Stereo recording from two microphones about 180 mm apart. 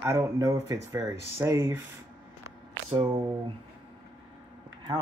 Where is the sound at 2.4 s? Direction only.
25° right (ahead or behind).